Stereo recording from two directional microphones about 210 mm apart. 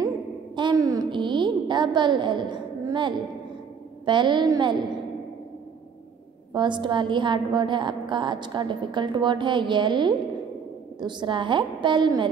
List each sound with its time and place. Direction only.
0.6 s a sound: 20° right (ahead or behind)
4.0 s a woman's voice: 20° right (ahead or behind)
6.5 s a woman's voice: 20° right (ahead or behind)